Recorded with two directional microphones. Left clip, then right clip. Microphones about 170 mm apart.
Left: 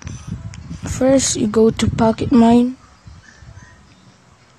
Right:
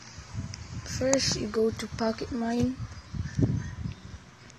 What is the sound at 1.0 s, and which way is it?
Speech, 45° left (ahead or behind).